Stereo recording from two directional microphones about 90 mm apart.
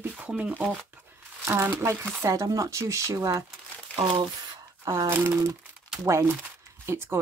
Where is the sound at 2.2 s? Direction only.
40° right (ahead or behind).